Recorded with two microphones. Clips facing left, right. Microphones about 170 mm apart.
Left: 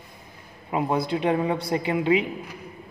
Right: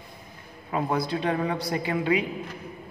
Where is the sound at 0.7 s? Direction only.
20° left (ahead or behind).